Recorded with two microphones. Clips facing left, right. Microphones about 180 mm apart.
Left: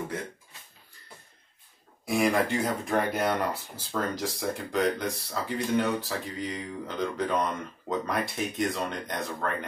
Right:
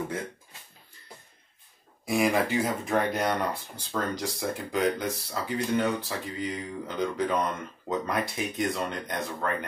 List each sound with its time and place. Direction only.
2.0 s speech: centre (ahead or behind)